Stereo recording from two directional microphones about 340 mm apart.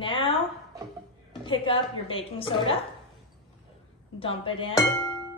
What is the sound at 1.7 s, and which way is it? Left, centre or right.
A woman's voice, centre.